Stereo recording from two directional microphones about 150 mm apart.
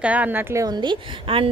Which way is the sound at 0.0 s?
10° right (ahead or behind).